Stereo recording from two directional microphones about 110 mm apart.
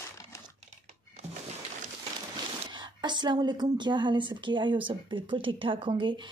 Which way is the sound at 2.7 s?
45° right (ahead or behind).